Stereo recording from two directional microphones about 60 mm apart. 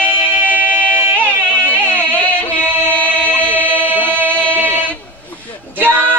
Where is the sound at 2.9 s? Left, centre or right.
Left.